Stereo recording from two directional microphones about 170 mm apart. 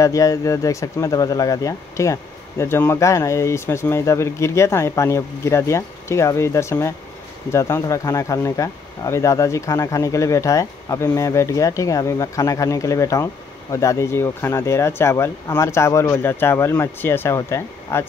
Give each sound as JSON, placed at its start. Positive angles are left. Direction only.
{"t": 0.0, "sound": "speech", "side_deg": 20}